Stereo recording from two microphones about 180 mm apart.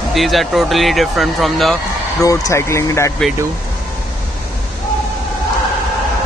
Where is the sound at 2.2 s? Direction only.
15° left (ahead or behind).